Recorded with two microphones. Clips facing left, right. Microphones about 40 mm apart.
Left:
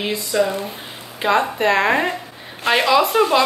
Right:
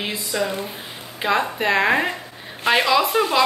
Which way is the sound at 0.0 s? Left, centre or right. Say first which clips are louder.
Left 5 dB; centre.